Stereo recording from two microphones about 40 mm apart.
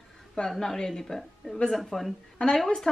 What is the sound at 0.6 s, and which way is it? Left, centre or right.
Speech, centre.